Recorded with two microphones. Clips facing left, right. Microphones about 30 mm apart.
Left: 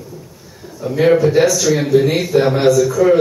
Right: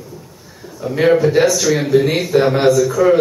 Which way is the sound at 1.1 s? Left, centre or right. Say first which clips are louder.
Even; centre.